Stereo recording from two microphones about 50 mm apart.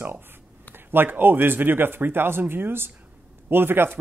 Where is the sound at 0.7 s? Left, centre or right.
Right.